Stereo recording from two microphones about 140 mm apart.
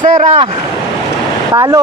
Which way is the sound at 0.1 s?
55° right (ahead or behind).